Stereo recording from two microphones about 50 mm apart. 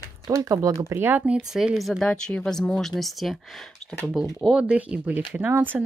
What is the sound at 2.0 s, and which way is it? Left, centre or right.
Speech, centre.